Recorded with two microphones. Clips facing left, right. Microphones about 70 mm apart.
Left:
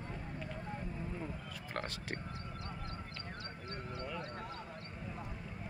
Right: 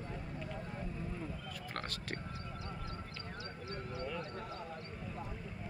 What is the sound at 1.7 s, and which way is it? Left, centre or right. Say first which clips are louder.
Speech: left 2 dB; left.